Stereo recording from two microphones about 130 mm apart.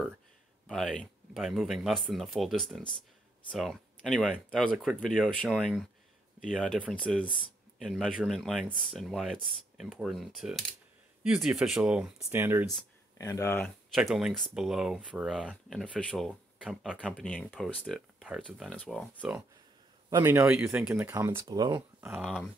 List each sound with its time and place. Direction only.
0.7 s speech: 5° left (ahead or behind)
12.3 s speech: 20° right (ahead or behind)
13.2 s speech: 25° left (ahead or behind)
13.9 s speech: centre (ahead or behind)
16.0 s speech: 10° left (ahead or behind)
16.6 s speech: 5° right (ahead or behind)
17.2 s speech: 5° left (ahead or behind)
20.2 s speech: 20° right (ahead or behind)
21.5 s speech: 30° right (ahead or behind)
22.0 s speech: 5° right (ahead or behind)